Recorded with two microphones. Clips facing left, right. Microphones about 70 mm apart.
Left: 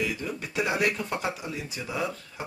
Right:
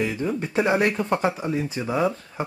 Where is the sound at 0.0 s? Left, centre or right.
Right.